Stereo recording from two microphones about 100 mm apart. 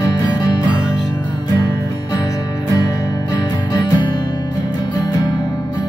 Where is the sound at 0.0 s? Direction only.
40° left (ahead or behind).